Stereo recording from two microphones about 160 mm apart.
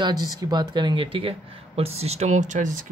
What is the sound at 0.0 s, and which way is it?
Speech, 25° right (ahead or behind).